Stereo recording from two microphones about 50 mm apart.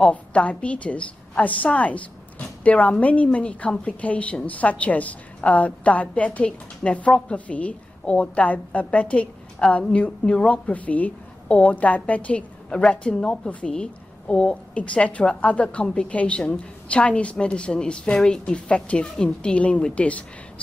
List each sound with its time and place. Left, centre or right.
0.1 s a woman's voice: left
7.3 s a woman's voice: left